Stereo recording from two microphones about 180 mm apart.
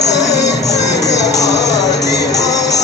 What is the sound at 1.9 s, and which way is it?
Music, 70° left (ahead or behind).